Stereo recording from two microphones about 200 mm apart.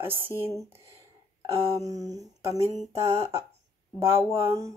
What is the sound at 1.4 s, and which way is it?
Speech, 15° right (ahead or behind).